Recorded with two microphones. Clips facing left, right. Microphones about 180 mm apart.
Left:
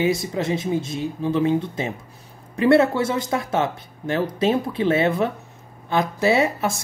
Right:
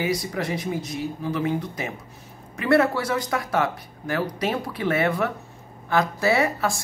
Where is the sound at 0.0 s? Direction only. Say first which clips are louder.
Left 4 dB; 25° left (ahead or behind).